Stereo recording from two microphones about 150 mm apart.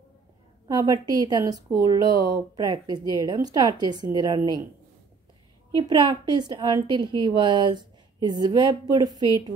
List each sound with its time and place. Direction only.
0.7 s a woman's voice: 25° right (ahead or behind)
5.8 s a woman's voice: 30° right (ahead or behind)